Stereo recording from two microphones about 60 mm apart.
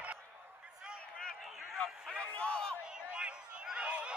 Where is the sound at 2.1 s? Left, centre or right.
Centre.